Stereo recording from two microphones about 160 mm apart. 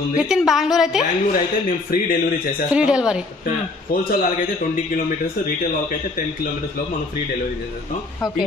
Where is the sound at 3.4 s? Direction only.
65° left (ahead or behind).